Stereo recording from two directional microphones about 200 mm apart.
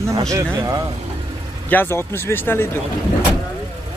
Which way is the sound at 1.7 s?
10° left (ahead or behind).